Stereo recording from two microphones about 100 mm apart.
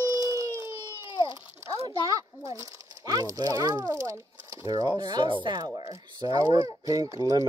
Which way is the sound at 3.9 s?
30° right (ahead or behind).